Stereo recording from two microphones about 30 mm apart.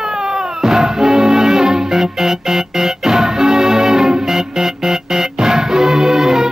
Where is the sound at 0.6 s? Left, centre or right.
Centre.